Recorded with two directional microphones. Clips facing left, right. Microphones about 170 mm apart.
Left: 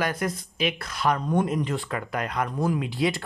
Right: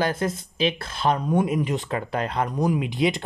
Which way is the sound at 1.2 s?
5° right (ahead or behind).